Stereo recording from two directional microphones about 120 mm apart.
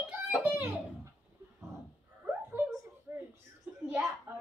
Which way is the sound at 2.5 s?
20° right (ahead or behind).